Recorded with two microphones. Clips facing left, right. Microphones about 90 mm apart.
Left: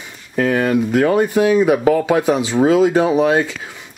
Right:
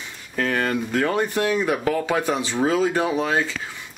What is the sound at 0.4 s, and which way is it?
Speech, 10° left (ahead or behind).